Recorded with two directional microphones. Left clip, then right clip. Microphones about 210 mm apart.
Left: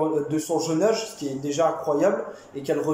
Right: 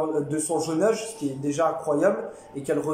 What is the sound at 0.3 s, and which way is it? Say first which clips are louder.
A man's voice: left 1 dB; 10° right (ahead or behind).